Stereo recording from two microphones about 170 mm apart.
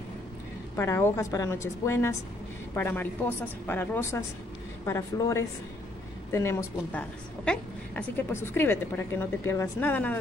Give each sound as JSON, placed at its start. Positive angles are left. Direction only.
{"t": 0.7, "sound": "a woman's voice", "side_deg": 15}